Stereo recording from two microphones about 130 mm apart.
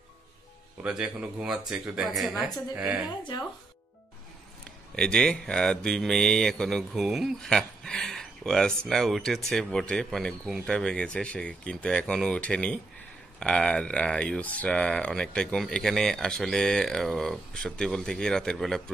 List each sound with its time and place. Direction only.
0.8 s a woman's voice: 5° right (ahead or behind)
4.9 s speech: 5° left (ahead or behind)